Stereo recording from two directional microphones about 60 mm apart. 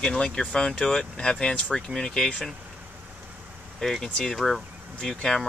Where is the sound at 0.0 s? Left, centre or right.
Centre.